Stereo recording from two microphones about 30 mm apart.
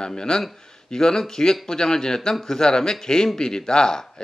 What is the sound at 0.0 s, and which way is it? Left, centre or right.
Speech, left.